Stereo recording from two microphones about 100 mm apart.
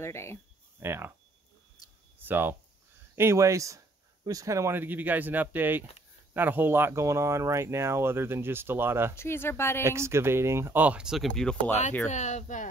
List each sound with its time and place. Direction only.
0.0 s speech: 25° left (ahead or behind)
0.7 s speech: 25° right (ahead or behind)
2.1 s speech: 20° right (ahead or behind)
9.1 s speech: 25° left (ahead or behind)
9.8 s speech: 25° right (ahead or behind); by 11.2 s 5° right (ahead or behind)
11.2 s speech: 5° left (ahead or behind)